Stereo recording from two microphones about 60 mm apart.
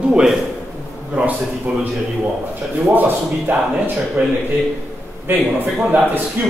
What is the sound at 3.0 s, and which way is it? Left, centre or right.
Speech, right.